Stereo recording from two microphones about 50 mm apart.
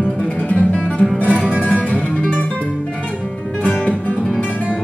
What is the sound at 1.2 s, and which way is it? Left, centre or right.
Music, right.